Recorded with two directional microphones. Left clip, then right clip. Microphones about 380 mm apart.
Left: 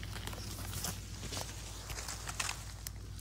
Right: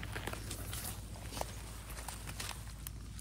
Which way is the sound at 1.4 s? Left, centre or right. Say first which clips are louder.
Right 3 dB; right.